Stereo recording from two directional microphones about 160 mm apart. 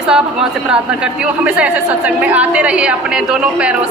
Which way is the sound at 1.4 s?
5° right (ahead or behind).